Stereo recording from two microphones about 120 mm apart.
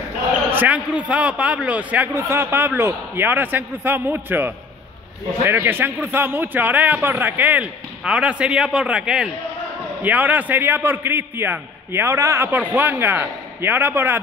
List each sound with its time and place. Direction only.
0.5 s a man's voice: 15° right (ahead or behind)